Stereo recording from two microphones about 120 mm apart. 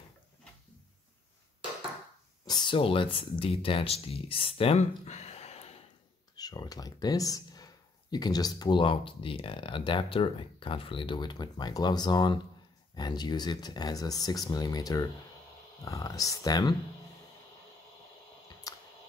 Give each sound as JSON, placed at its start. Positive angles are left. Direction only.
{"t": 2.4, "sound": "speech", "side_deg": 40}
{"t": 6.3, "sound": "speech", "side_deg": 35}
{"t": 18.7, "sound": "drip", "side_deg": 30}